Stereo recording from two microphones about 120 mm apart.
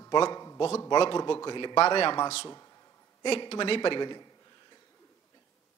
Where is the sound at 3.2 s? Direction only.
45° left (ahead or behind).